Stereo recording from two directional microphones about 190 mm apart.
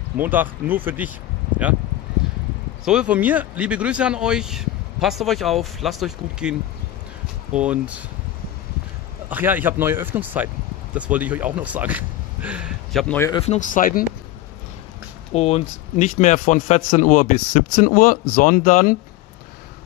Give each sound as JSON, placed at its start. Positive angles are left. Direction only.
{"t": 0.2, "sound": "speech", "side_deg": -10}
{"t": 2.2, "sound": "a sound", "side_deg": 0}
{"t": 2.8, "sound": "speech", "side_deg": -5}
{"t": 7.5, "sound": "speech", "side_deg": -5}
{"t": 9.3, "sound": "speech", "side_deg": -10}
{"t": 13.3, "sound": "speech", "side_deg": 35}
{"t": 15.3, "sound": "a man's voice", "side_deg": 35}